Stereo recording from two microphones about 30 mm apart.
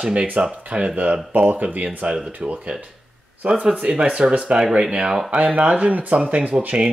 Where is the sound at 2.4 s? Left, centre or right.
Right.